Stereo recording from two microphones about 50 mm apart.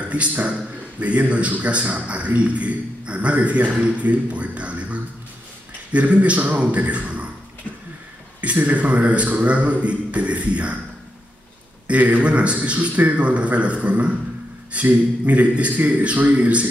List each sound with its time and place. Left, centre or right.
0.1 s a man's voice: right
8.4 s a man's voice: right
11.9 s a man's voice: right